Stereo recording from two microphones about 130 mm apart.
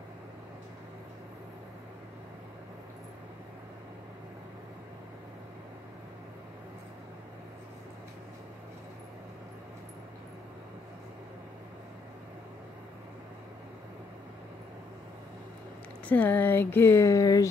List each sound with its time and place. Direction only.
16.1 s speech: 15° left (ahead or behind)